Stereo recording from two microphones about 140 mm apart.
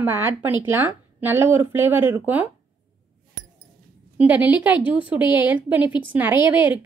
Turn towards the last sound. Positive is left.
turn(degrees=-10)  # may be behind; listen again after turning